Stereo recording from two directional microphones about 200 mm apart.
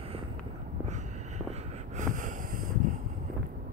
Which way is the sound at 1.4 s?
35° right (ahead or behind).